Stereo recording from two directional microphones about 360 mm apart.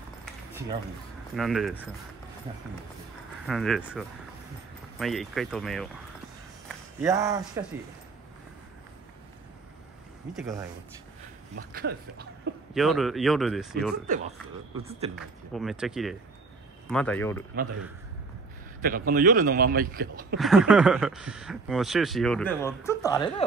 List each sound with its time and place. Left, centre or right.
1.3 s speech: centre
3.4 s speech: centre
7.0 s speech: centre
10.3 s speech: centre
11.7 s a man's voice: right
12.7 s speech: centre
14.8 s speech: centre
15.1 s speech: centre
18.9 s a man's voice: right
20.3 s speech: centre